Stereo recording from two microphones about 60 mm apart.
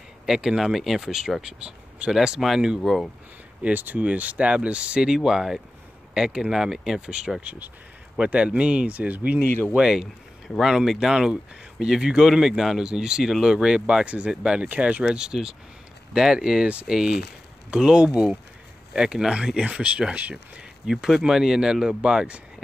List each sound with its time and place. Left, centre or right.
0.3 s speech: centre
1.6 s speech: centre
3.6 s speech: right; by 7.4 s centre
7.4 s speech: right
9.4 s speech: left
9.8 s speech: centre
20.8 s speech: centre